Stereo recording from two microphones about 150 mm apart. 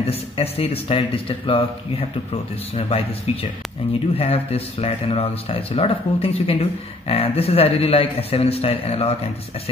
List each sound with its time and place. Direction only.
0.0 s speech: 40° left (ahead or behind)